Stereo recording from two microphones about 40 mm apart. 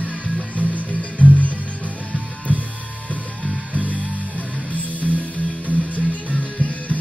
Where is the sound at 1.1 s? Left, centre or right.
Left.